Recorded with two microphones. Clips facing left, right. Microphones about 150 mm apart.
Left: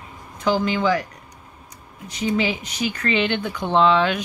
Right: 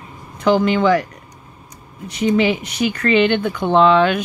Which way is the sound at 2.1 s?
65° right (ahead or behind).